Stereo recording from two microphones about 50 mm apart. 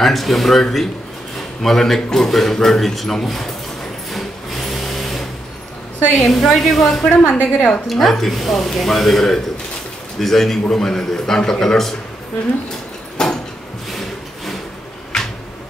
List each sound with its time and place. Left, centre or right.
0.0 s speech: centre
4.1 s sewing machine: centre
6.1 s speech: centre
7.0 s a woman's voice: centre
7.8 s a man's voice: centre
13.2 s a sound: centre